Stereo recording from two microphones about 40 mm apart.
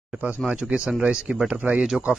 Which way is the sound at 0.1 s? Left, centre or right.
Right.